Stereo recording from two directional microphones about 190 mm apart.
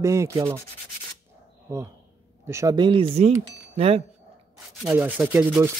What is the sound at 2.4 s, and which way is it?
A man's voice, 15° right (ahead or behind).